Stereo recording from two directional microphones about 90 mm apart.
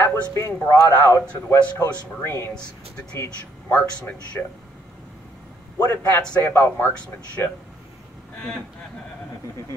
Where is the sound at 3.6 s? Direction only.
15° left (ahead or behind).